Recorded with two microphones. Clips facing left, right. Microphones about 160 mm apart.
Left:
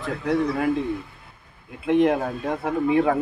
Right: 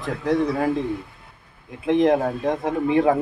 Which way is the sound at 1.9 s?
40° right (ahead or behind).